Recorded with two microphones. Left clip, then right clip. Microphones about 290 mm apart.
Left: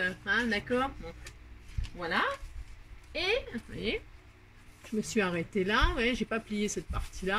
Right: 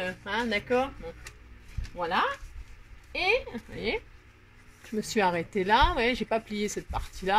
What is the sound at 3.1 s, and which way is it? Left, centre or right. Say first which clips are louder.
Speech: right 4 dB; centre.